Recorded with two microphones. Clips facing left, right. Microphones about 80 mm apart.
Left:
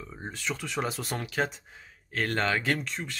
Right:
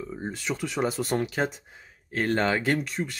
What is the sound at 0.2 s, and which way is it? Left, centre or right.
Speech, centre.